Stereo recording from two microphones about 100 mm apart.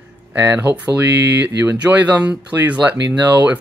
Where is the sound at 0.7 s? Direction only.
15° right (ahead or behind).